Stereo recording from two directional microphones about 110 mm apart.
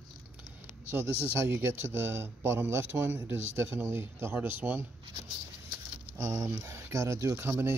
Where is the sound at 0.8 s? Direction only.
20° right (ahead or behind).